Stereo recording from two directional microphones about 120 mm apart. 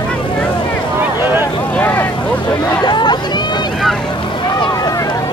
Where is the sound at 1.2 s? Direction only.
15° right (ahead or behind).